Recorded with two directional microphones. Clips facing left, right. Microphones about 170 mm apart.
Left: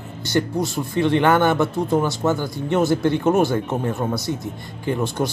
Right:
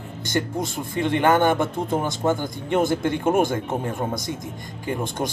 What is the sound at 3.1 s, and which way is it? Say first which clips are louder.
Speech: even; 50° right (ahead or behind).